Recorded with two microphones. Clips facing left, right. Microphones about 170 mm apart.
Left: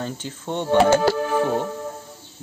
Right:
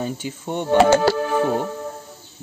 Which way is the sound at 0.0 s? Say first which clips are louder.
Right 3 dB; 10° right (ahead or behind).